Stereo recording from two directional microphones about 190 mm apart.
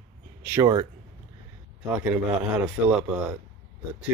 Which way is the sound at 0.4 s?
15° right (ahead or behind).